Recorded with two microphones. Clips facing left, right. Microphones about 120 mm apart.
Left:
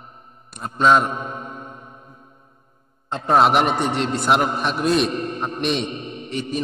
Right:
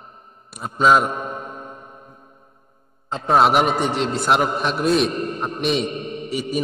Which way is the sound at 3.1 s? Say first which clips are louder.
Even; centre (ahead or behind).